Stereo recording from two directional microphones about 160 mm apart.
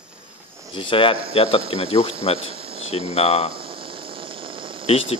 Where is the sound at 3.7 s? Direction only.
35° right (ahead or behind).